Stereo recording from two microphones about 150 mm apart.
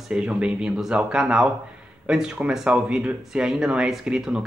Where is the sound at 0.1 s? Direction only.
5° right (ahead or behind).